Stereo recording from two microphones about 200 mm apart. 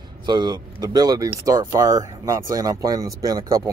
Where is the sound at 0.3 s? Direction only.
20° right (ahead or behind).